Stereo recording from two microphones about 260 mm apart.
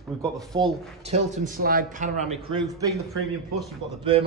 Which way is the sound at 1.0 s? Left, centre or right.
Right.